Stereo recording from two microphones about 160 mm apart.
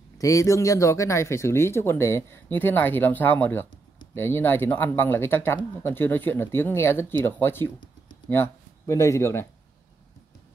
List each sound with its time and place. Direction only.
0.2 s speech: 20° left (ahead or behind)